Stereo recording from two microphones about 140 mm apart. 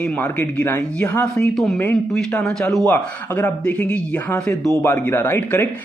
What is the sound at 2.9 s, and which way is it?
A man's voice, 15° left (ahead or behind).